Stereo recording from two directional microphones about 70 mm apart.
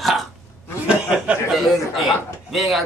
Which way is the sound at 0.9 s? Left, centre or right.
Centre.